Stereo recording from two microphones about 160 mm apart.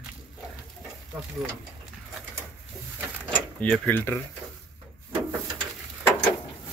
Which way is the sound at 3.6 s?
10° left (ahead or behind).